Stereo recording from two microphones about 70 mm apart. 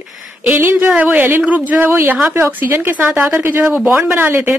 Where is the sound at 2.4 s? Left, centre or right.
Right.